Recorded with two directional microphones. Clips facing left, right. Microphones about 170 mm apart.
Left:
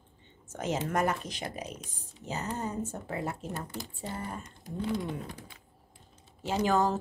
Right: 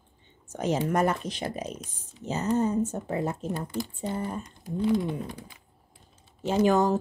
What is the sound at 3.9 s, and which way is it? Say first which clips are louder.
Speech: right 6 dB; 20° right (ahead or behind).